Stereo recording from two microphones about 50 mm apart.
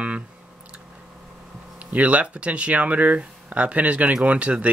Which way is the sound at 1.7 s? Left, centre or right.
Right.